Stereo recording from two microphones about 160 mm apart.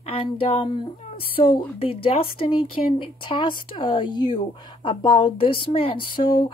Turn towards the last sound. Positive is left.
turn(degrees=30)  # may be behind; listen again after turning